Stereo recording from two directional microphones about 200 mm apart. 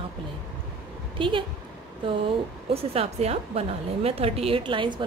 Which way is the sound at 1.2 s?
25° right (ahead or behind).